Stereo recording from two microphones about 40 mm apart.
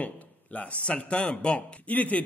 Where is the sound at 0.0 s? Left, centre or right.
Left.